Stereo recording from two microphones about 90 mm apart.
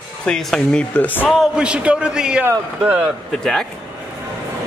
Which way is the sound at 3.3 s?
5° left (ahead or behind).